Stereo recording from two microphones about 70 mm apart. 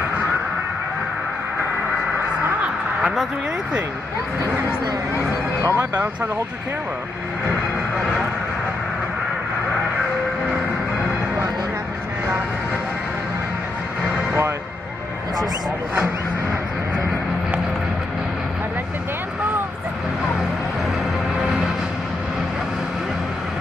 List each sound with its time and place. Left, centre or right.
5.6 s speech: right